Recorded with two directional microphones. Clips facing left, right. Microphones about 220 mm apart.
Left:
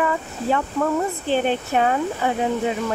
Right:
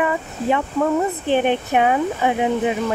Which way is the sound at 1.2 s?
15° right (ahead or behind).